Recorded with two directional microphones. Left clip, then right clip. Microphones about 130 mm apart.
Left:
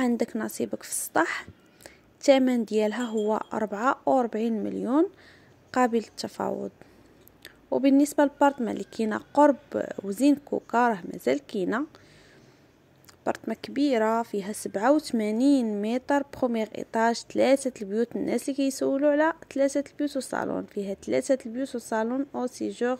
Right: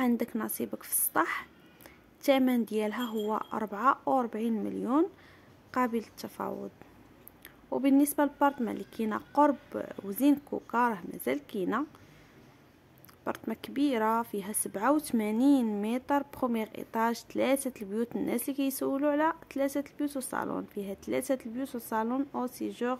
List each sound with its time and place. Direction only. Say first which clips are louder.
0.0 s a woman's voice: left 4 dB; 20° left (ahead or behind)
7.4 s a sound: left 6 dB; 20° left (ahead or behind)
8.0 s a woman's voice: left 5 dB; 20° left (ahead or behind)
13.2 s speech: left 6 dB; 20° left (ahead or behind)